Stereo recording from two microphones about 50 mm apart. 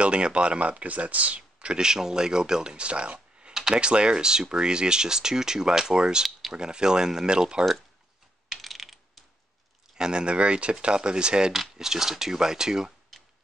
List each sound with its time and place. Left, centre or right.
0.0 s speech: right
3.5 s a sound: centre
3.8 s speech: centre
8.5 s mechanisms: centre
9.9 s speech: centre
11.5 s speech: centre
13.1 s a sound: centre